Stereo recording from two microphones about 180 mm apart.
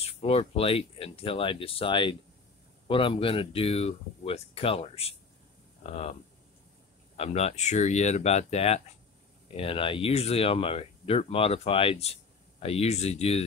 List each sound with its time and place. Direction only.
0.0 s speech: 35° left (ahead or behind)
7.2 s speech: 35° left (ahead or behind)